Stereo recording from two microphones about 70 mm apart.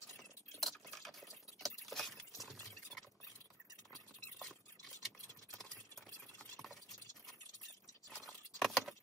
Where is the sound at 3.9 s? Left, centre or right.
Centre.